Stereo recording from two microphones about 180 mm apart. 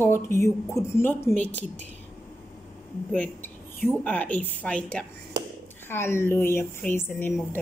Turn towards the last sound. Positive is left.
turn(degrees=10)  # may be behind; listen again after turning